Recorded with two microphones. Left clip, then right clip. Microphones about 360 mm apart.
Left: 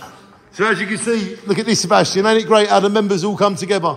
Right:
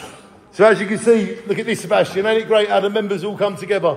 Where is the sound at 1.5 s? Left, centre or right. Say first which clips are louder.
Left 4 dB; centre.